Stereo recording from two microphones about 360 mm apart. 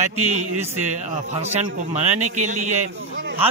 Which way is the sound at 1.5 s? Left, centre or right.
Centre.